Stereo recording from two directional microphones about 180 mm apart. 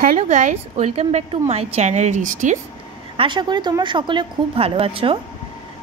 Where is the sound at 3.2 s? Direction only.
25° right (ahead or behind).